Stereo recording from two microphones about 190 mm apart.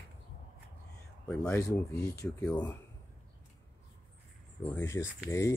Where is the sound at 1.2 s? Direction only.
5° left (ahead or behind).